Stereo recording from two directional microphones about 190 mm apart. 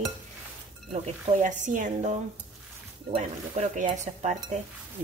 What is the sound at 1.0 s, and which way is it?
Speech, 40° right (ahead or behind).